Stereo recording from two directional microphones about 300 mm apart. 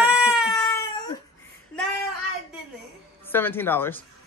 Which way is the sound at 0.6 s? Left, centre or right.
Centre.